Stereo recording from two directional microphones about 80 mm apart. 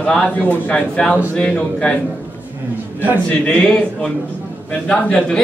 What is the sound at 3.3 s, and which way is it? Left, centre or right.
A man's voice, centre.